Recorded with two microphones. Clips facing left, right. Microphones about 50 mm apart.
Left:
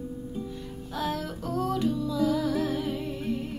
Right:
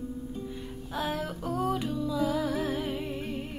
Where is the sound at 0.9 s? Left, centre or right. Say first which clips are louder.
Left 1 dB; centre.